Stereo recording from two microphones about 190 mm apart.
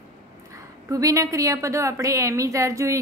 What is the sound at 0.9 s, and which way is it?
A woman's voice, 15° right (ahead or behind).